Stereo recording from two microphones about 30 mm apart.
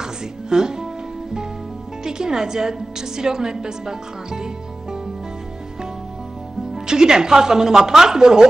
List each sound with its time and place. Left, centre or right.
0.0 s music: right
2.0 s a woman's voice: right
6.7 s speech: right